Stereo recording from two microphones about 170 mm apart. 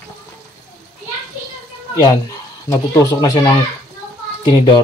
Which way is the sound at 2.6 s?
20° left (ahead or behind).